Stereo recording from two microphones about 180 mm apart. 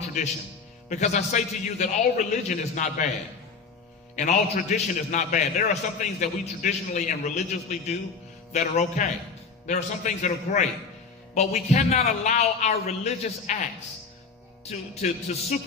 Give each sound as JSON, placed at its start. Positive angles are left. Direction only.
{"t": 0.8, "sound": "a man's voice", "side_deg": 40}
{"t": 4.1, "sound": "a man's voice", "side_deg": 40}
{"t": 14.7, "sound": "a man's voice", "side_deg": 40}